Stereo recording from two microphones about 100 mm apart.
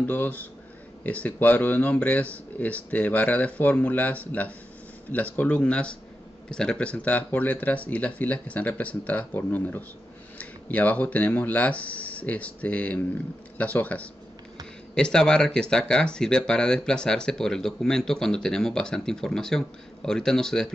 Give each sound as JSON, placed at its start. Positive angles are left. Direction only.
{"t": 0.0, "sound": "speech", "side_deg": 20}